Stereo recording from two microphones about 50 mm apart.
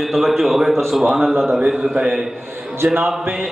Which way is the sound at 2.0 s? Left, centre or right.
Centre.